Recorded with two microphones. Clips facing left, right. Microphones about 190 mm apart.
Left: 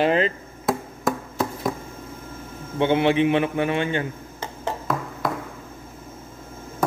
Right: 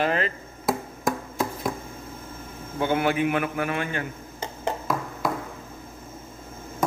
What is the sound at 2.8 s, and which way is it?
A man's voice, 25° left (ahead or behind).